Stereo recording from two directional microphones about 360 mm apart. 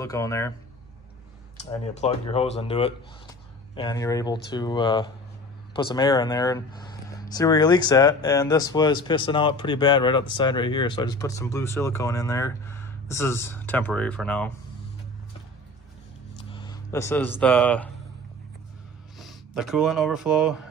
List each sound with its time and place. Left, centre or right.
0.0 s speech: centre
1.6 s speech: centre
16.4 s speech: centre
19.1 s speech: centre